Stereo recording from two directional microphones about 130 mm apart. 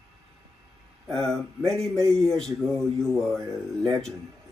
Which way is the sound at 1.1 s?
5° left (ahead or behind).